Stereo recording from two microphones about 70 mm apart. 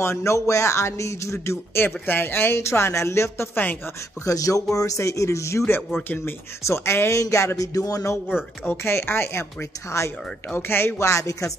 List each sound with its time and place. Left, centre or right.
0.0 s speech: left
4.2 s speech: left
6.6 s speech: left
8.6 s speech: left
10.5 s speech: left